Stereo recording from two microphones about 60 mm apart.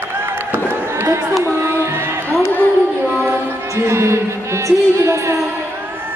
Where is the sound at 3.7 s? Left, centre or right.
Right.